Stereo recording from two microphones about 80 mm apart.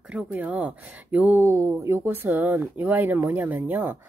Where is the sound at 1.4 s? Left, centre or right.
Right.